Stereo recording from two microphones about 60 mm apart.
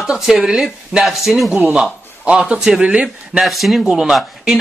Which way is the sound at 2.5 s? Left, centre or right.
Centre.